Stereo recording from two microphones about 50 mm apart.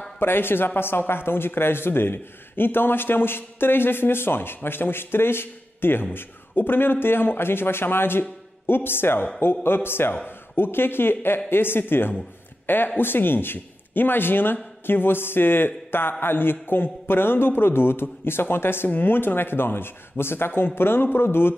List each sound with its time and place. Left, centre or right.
0.2 s a man's voice: left